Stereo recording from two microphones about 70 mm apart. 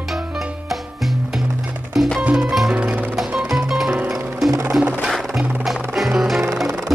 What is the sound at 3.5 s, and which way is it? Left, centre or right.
Music, centre.